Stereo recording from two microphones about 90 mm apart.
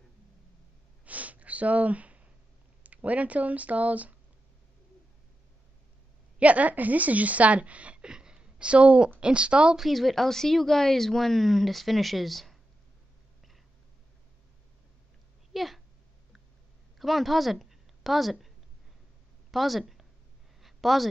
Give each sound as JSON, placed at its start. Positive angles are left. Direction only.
{"t": 1.0, "sound": "sniff", "side_deg": -15}
{"t": 2.8, "sound": "a woman's voice", "side_deg": -15}
{"t": 6.4, "sound": "a woman's voice", "side_deg": -15}
{"t": 15.5, "sound": "a sound", "side_deg": 0}
{"t": 17.0, "sound": "speech", "side_deg": 0}
{"t": 19.5, "sound": "speech", "side_deg": 0}
{"t": 20.6, "sound": "a sound", "side_deg": 0}